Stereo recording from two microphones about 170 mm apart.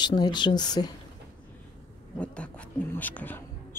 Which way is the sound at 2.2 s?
5° left (ahead or behind).